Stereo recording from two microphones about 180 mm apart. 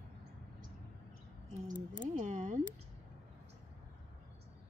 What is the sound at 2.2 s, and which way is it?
Speech, 40° right (ahead or behind).